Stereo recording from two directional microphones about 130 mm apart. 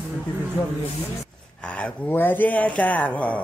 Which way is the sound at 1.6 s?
10° left (ahead or behind).